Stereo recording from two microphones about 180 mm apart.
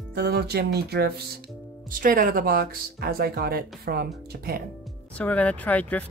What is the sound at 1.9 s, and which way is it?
Speech, 50° right (ahead or behind).